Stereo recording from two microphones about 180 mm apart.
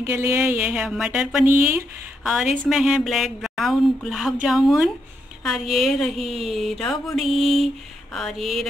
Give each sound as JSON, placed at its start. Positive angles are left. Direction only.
{"t": 0.0, "sound": "speech", "side_deg": -15}